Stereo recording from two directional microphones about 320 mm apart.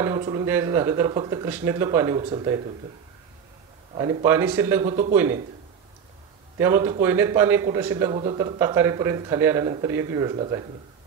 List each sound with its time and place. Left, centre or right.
0.0 s speech: centre
3.9 s speech: centre
6.6 s speech: centre